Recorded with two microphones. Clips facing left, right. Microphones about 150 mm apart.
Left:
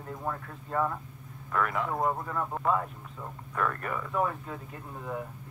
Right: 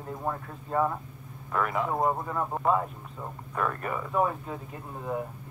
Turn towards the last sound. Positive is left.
turn(degrees=-25)  # may be behind; listen again after turning